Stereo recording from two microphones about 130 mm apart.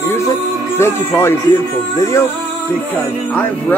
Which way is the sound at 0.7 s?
20° left (ahead or behind).